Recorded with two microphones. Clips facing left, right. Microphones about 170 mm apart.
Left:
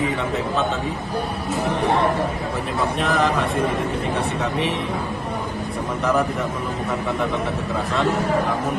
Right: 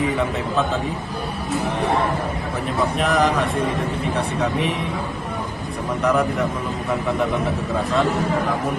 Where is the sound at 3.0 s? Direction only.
Centre (ahead or behind).